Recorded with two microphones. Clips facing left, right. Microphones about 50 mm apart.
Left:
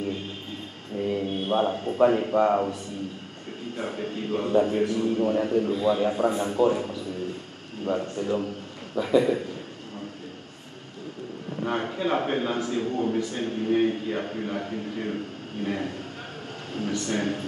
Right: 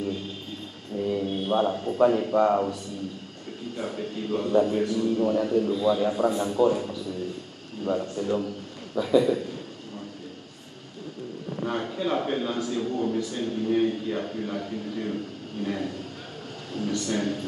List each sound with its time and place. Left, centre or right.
0.9 s a man's voice: left
11.6 s a man's voice: left